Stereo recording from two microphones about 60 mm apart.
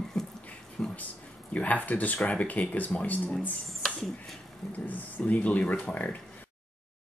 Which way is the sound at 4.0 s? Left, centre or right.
Centre.